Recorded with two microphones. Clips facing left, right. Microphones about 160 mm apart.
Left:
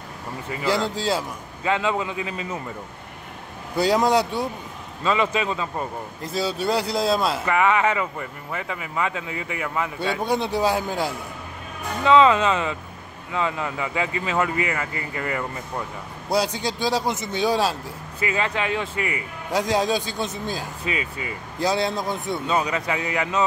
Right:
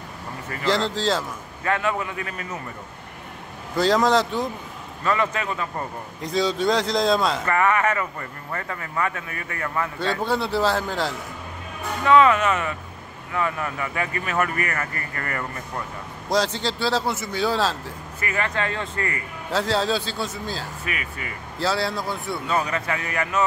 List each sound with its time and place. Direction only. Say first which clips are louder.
0.5 s speech: even; 15° left (ahead or behind)
3.7 s speech: even; 10° left (ahead or behind)
6.2 s speech: right 3 dB; 5° left (ahead or behind)
12.0 s speech: left 1 dB; 25° left (ahead or behind)